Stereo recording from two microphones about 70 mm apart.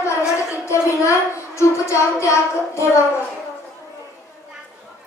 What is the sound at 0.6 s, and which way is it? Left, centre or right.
Child singing, left.